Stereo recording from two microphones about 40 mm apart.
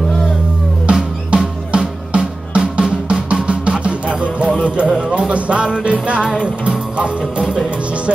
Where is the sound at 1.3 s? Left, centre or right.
Right.